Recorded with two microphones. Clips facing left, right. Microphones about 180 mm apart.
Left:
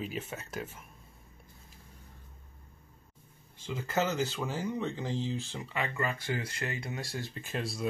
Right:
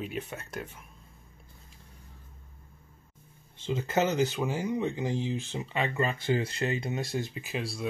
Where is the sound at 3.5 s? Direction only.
20° right (ahead or behind).